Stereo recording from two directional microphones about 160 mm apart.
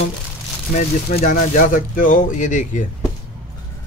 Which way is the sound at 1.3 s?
60° left (ahead or behind).